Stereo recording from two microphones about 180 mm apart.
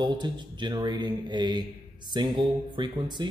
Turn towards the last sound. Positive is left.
turn(degrees=-25)  # may be behind; listen again after turning